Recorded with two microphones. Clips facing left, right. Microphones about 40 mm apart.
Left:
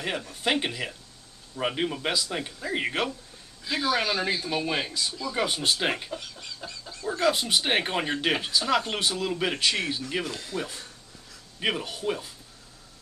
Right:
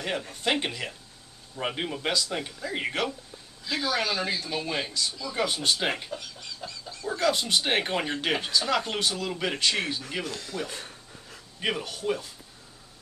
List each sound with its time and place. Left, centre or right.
0.4 s speech: centre
10.7 s pant: right
11.6 s speech: centre